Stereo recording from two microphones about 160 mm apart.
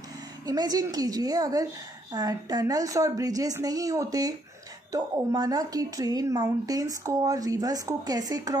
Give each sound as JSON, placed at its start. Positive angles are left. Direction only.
{"t": 0.5, "sound": "a woman's voice", "side_deg": -25}